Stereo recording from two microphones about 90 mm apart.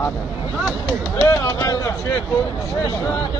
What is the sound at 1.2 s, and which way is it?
Speech, 35° left (ahead or behind).